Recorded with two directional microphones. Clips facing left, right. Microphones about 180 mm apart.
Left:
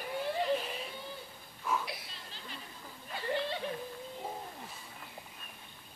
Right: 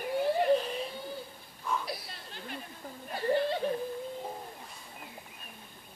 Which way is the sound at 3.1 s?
40° right (ahead or behind).